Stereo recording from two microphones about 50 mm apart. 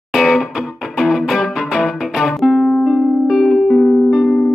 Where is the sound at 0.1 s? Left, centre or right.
Centre.